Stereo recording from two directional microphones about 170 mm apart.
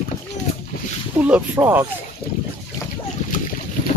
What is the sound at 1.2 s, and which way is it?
Speech, 10° right (ahead or behind).